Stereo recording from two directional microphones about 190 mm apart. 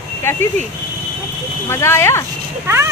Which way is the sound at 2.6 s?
15° right (ahead or behind).